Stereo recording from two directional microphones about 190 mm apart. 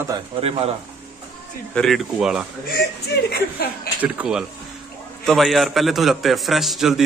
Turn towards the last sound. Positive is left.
turn(degrees=0)  # may be behind; listen again after turning